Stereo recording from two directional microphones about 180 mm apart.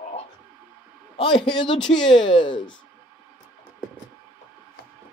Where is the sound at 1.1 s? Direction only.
30° left (ahead or behind).